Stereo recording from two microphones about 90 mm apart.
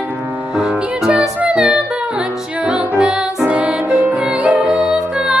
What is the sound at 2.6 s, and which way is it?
Music, 10° right (ahead or behind).